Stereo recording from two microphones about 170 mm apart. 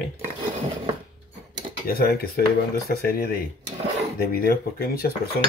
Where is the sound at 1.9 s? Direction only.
65° left (ahead or behind).